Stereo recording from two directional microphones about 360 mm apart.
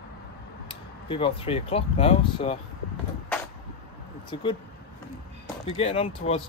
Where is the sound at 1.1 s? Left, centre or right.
Centre.